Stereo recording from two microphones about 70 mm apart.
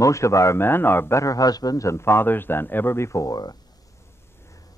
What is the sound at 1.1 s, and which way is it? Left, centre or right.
Speech, left.